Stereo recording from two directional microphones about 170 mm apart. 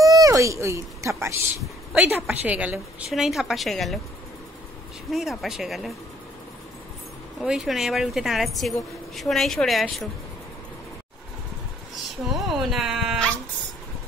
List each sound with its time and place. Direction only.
0.0 s a woman's voice: 20° right (ahead or behind); by 4.0 s centre (ahead or behind)
5.1 s a woman's voice: centre (ahead or behind)
7.4 s a woman's voice: centre (ahead or behind)
12.3 s a woman's voice: centre (ahead or behind)